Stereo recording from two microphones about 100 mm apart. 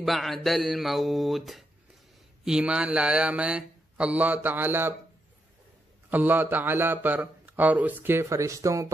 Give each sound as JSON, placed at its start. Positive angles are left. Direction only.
{"t": 0.0, "sound": "speech", "side_deg": 0}
{"t": 6.0, "sound": "a man's voice", "side_deg": -20}